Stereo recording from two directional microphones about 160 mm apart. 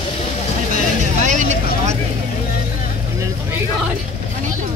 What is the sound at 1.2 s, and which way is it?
Vehicle, 50° right (ahead or behind).